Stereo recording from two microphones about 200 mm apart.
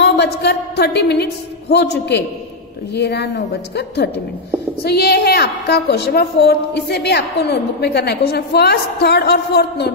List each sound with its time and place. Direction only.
0.0 s a woman's voice: 55° left (ahead or behind)